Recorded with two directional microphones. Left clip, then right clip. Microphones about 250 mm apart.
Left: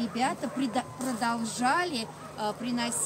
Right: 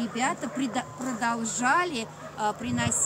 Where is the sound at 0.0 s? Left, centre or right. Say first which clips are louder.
Right 1 dB; centre.